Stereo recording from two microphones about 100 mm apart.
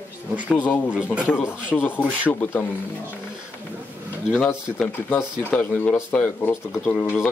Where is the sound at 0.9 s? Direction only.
10° right (ahead or behind).